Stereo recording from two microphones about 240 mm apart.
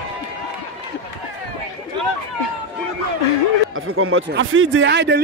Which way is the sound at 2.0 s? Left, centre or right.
Centre.